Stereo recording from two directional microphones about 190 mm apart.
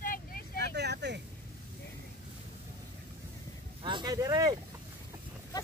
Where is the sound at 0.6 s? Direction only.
60° right (ahead or behind).